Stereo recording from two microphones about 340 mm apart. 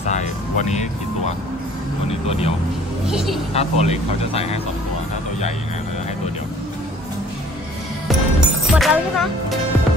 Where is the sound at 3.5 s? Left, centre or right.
Centre.